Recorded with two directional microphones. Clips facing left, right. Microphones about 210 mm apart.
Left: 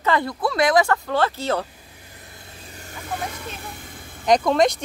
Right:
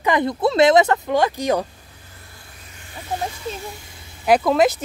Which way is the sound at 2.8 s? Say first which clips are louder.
Right 3 dB; 50° left (ahead or behind).